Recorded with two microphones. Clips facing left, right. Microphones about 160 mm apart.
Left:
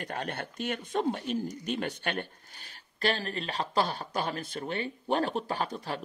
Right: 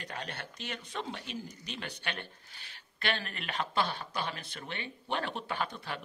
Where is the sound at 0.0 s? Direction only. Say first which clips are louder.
Left 6 dB; 50° left (ahead or behind).